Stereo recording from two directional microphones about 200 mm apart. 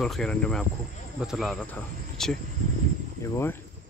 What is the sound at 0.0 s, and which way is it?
Speech, 5° left (ahead or behind).